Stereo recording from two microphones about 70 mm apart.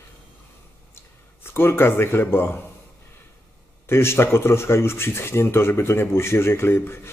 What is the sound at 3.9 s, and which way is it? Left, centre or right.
Speech, left.